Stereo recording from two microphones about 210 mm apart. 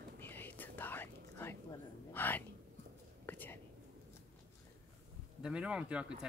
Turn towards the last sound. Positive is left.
turn(degrees=-5)  # may be behind; listen again after turning